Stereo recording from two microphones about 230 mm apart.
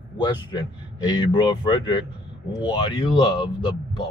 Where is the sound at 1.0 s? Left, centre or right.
Centre.